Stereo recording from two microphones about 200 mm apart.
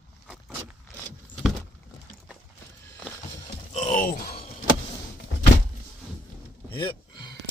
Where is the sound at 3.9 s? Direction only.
45° left (ahead or behind).